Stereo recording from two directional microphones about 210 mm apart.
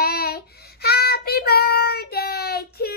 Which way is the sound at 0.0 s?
50° left (ahead or behind).